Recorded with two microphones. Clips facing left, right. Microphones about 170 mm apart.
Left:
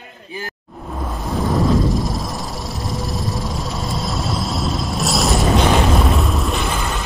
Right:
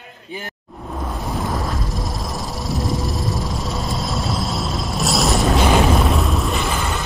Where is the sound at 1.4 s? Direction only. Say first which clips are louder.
Left 9 dB; centre (ahead or behind).